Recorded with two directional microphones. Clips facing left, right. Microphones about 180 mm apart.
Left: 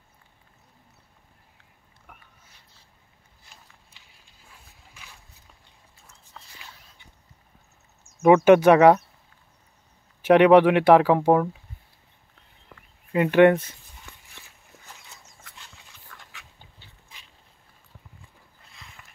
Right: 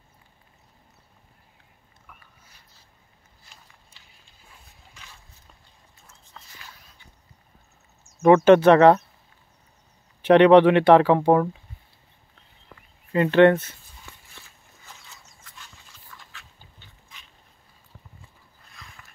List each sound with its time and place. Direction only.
6.4 s walk: 5° left (ahead or behind)
8.2 s speech: 15° left (ahead or behind)
10.2 s speech: 5° left (ahead or behind)
13.1 s speech: 10° left (ahead or behind)
15.5 s horse: 70° left (ahead or behind)
16.1 s dog: 65° left (ahead or behind)